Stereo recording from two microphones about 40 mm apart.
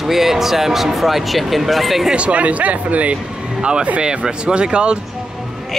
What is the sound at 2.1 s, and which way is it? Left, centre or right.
Speech, right.